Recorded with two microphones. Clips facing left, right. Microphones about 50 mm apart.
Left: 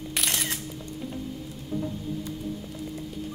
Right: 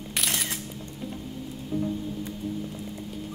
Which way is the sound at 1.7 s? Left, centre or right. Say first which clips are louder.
Right 2 dB; right.